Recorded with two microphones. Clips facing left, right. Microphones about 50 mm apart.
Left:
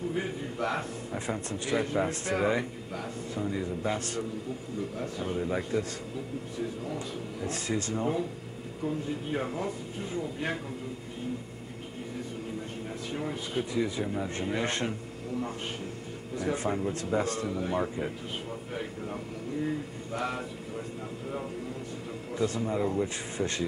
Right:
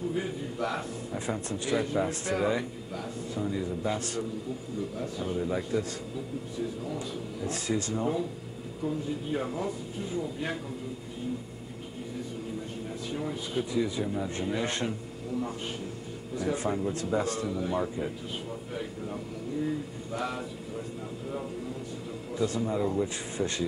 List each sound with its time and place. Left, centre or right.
0.1 s a sound: left
1.5 s a man's voice: left
13.1 s a man's voice: left
16.3 s a man's voice: left
18.7 s a sound: left
22.3 s a man's voice: left
23.0 s speech: left